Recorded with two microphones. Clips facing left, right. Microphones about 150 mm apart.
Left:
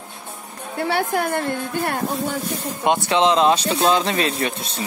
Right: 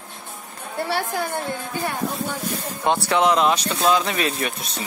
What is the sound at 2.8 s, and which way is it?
A man's voice, 20° left (ahead or behind).